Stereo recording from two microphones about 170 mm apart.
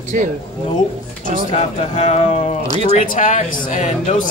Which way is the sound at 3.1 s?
50° left (ahead or behind).